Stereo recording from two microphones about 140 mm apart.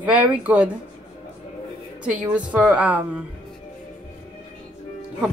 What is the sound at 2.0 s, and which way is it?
Speech, 10° right (ahead or behind).